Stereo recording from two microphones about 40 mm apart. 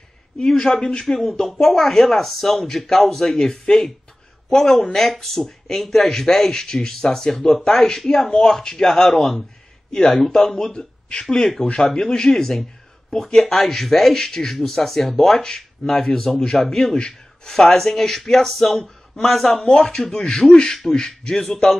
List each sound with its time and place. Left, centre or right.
0.5 s speech: centre
1.5 s speech: centre
11.1 s speech: left